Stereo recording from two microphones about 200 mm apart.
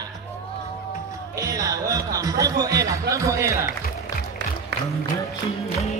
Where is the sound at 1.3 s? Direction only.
15° right (ahead or behind).